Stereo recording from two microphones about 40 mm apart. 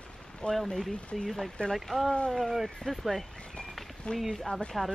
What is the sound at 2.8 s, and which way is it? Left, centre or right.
Speech, centre.